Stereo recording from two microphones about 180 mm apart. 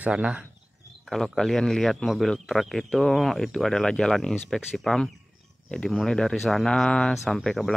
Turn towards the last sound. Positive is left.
turn(degrees=0)  # may be behind; listen again after turning